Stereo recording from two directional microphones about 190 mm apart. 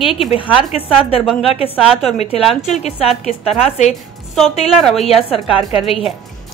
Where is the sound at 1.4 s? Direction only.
30° left (ahead or behind).